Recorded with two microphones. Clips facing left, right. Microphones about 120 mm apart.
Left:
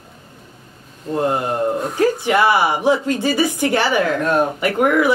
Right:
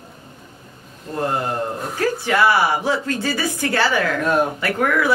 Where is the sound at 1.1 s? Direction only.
20° left (ahead or behind).